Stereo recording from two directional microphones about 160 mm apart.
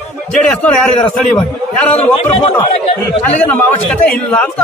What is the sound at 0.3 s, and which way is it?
Speech, 5° left (ahead or behind).